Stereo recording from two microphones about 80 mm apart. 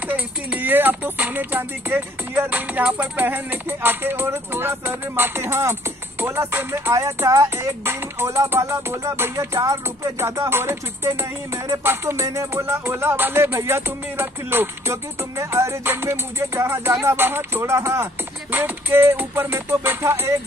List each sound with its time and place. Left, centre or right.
0.0 s speech: right
6.9 s music: right
10.1 s music: right